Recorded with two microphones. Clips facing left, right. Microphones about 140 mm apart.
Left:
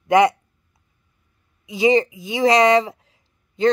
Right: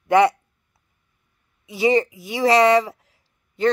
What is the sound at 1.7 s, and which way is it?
Speech, 20° left (ahead or behind).